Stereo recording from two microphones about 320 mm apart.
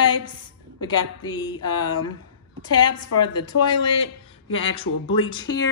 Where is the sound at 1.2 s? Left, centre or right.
Centre.